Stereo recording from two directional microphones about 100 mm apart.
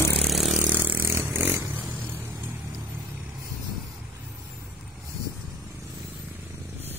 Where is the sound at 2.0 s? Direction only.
25° right (ahead or behind).